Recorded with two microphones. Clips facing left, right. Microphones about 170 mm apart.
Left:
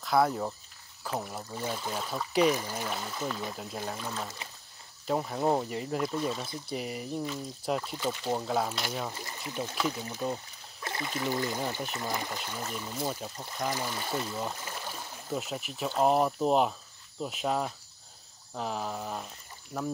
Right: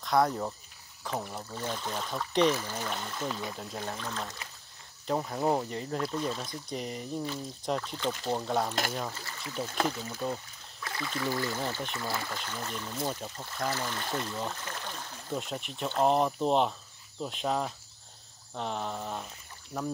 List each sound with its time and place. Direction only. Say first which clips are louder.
0.0 s speech: even; 5° left (ahead or behind)
9.2 s speech: left 1 dB; 20° left (ahead or behind)
10.8 s speech: left 1 dB; 25° left (ahead or behind); by 19.9 s centre (ahead or behind)